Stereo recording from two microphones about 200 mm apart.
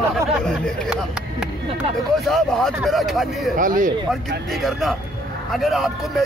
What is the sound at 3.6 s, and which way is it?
Speech, 40° right (ahead or behind).